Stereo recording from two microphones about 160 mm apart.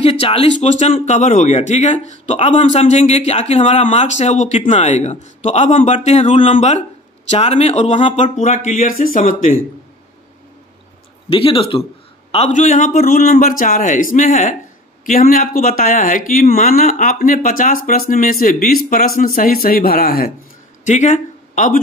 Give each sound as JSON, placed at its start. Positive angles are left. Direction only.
{"t": 0.0, "sound": "a man's voice", "side_deg": 35}
{"t": 11.2, "sound": "speech", "side_deg": 35}
{"t": 12.3, "sound": "a man's voice", "side_deg": 45}
{"t": 20.8, "sound": "speech", "side_deg": 50}